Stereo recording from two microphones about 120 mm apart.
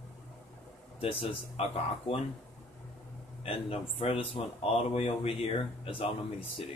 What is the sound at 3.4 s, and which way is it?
Speech, 50° left (ahead or behind).